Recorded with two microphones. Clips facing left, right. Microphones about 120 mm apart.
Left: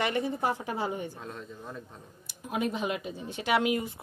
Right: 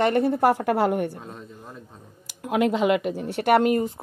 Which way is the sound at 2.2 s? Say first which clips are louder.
Right 9 dB; 90° right.